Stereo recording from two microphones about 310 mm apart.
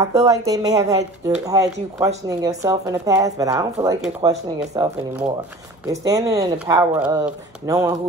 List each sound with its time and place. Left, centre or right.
0.0 s speech: centre